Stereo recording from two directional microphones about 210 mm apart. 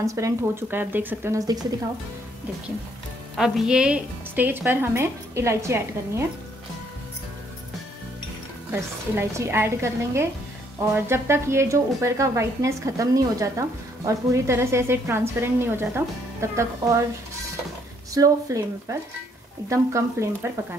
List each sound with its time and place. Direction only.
0.0 s speech: 15° right (ahead or behind)
3.3 s speech: centre (ahead or behind)
8.7 s speech: 10° right (ahead or behind)
18.1 s speech: 15° right (ahead or behind)